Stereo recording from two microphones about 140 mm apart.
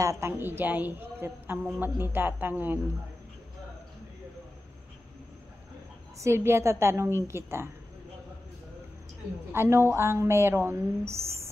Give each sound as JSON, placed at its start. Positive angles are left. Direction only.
{"t": 0.0, "sound": "a woman's voice", "side_deg": -20}
{"t": 6.2, "sound": "a woman's voice", "side_deg": -20}
{"t": 9.5, "sound": "a woman's voice", "side_deg": -15}